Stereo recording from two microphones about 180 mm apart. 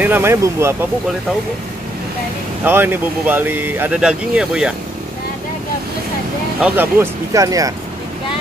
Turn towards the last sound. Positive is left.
turn(degrees=-20)  # may be behind; listen again after turning